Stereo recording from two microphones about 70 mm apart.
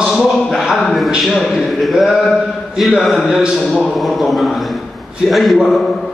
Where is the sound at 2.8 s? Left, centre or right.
Centre.